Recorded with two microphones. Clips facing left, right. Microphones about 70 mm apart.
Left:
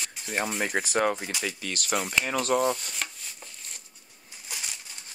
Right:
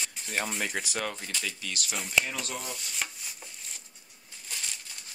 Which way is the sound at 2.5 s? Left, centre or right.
Left.